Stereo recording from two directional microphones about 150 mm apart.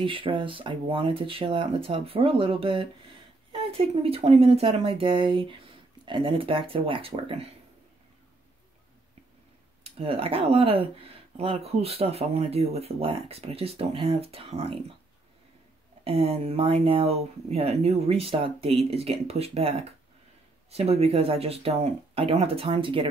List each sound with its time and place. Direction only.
0.0 s speech: 35° right (ahead or behind)
9.8 s speech: 40° right (ahead or behind)
16.0 s speech: 40° right (ahead or behind)